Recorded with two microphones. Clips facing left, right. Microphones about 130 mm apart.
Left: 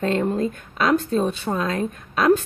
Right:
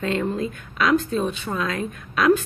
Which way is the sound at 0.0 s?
40° left (ahead or behind).